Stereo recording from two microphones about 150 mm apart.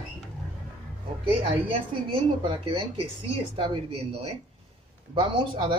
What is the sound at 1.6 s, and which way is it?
Speech, 35° right (ahead or behind).